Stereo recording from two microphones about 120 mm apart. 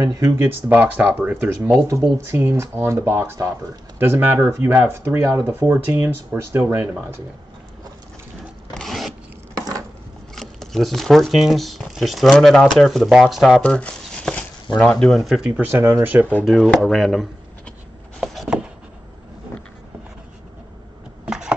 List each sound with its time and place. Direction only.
0.0 s speech: 30° right (ahead or behind)
0.4 s speech: 15° right (ahead or behind)
1.9 s speech: 25° right (ahead or behind)
8.7 s zipper: centre (ahead or behind)
9.6 s a sound: 30° right (ahead or behind)
10.3 s speech: 5° left (ahead or behind)
13.6 s speech: 10° left (ahead or behind); by 15.6 s 5° right (ahead or behind)
15.7 s speech: 20° right (ahead or behind)
16.4 s speech: centre (ahead or behind)
18.2 s a sound: centre (ahead or behind)
21.3 s a sound: 5° right (ahead or behind)